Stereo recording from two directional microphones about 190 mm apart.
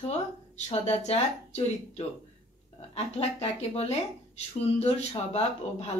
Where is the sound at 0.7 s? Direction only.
35° left (ahead or behind).